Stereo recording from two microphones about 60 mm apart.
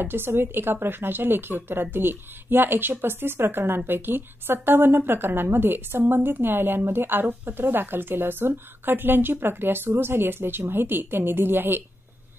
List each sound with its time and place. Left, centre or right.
0.0 s a woman's voice: right